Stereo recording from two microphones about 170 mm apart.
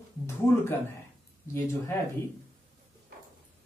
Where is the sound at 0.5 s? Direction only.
15° left (ahead or behind).